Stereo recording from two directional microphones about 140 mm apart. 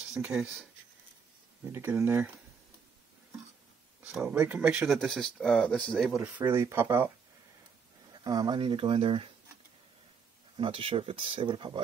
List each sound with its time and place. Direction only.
0.1 s speech: 5° right (ahead or behind)
1.6 s speech: 15° right (ahead or behind)
4.0 s speech: 5° right (ahead or behind)
6.2 s speech: 15° right (ahead or behind)
8.1 s speech: 30° right (ahead or behind)
10.5 s speech: 40° right (ahead or behind)